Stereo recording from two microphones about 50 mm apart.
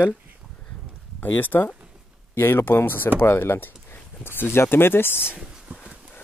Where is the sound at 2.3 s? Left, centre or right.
Left.